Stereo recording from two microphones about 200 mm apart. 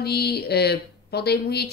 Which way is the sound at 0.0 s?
55° left (ahead or behind).